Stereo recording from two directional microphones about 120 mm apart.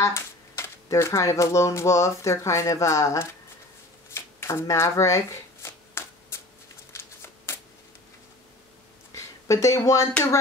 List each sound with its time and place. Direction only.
0.0 s speech: 25° left (ahead or behind)
4.1 s shuffling cards: 20° left (ahead or behind)
9.1 s a sound: 25° left (ahead or behind)